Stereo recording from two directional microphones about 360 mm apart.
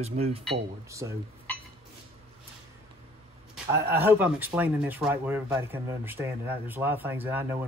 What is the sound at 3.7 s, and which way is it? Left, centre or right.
Speech, centre.